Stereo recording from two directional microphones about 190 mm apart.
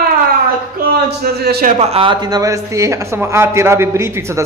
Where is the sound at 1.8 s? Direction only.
30° right (ahead or behind).